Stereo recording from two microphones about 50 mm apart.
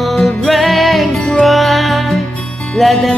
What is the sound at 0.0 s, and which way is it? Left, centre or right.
Music, centre.